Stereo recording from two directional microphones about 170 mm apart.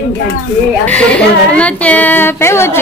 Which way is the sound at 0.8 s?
5° left (ahead or behind).